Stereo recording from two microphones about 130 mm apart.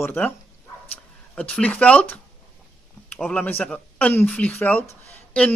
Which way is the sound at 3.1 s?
10° left (ahead or behind).